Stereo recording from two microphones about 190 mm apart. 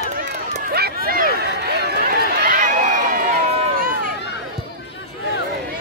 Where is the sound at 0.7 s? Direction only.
55° right (ahead or behind).